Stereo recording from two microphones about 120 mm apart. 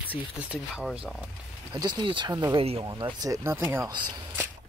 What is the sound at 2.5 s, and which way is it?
Speech, 55° right (ahead or behind).